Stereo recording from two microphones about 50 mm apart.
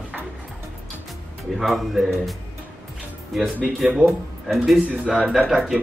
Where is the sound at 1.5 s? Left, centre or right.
Centre.